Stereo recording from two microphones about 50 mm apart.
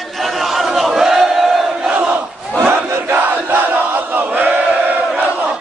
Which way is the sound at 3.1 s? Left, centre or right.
Right.